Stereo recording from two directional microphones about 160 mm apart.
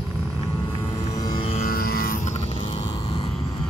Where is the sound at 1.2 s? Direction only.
25° left (ahead or behind).